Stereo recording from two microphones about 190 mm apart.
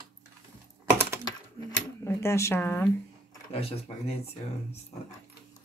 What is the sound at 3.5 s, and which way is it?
Speech, 30° left (ahead or behind).